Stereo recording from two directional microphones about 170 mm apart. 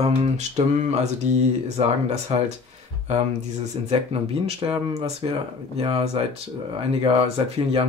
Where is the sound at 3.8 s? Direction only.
35° right (ahead or behind).